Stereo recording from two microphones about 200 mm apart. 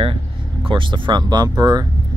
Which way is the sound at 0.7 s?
25° right (ahead or behind).